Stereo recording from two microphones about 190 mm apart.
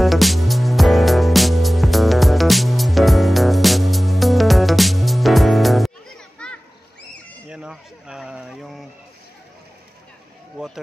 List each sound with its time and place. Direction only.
0.0 s music: centre (ahead or behind)
7.4 s a sound: 5° right (ahead or behind)
10.6 s run: 5° right (ahead or behind)